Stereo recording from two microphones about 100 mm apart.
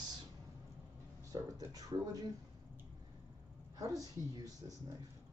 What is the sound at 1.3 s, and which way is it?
Speech, 40° right (ahead or behind).